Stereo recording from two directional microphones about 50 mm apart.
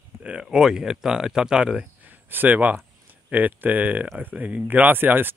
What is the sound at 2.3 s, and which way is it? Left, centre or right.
Speech, right.